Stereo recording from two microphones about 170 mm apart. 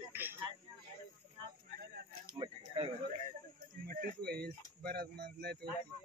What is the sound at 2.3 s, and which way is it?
Speech, 30° right (ahead or behind).